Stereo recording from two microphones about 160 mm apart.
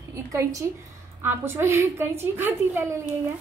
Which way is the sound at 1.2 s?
15° right (ahead or behind).